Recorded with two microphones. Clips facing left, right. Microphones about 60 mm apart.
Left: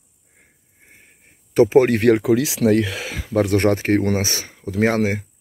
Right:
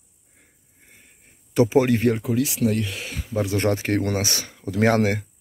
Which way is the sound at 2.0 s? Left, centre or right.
Left.